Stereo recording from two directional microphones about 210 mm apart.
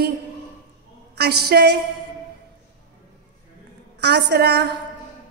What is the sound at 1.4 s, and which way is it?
Speech, 50° right (ahead or behind).